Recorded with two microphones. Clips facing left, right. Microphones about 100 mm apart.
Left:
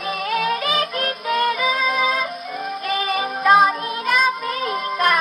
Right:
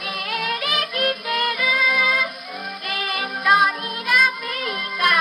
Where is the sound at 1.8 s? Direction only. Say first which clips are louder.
Right 1 dB; 40° left (ahead or behind).